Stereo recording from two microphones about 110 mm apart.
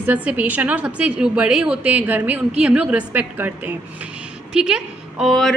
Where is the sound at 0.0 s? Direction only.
15° right (ahead or behind).